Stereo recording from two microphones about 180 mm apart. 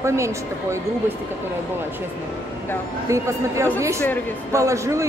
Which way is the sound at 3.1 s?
15° right (ahead or behind).